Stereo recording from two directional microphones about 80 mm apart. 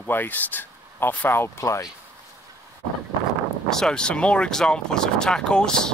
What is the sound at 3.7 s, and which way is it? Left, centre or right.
Speech, centre.